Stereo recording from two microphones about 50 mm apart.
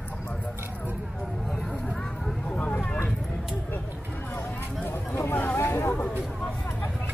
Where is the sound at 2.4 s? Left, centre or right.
Left.